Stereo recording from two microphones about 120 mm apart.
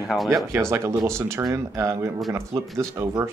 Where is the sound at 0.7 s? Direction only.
25° right (ahead or behind).